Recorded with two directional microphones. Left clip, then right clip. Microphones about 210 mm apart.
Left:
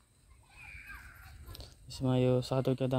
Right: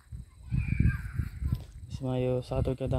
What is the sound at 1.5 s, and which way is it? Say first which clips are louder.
Speech: right 1 dB; 10° left (ahead or behind).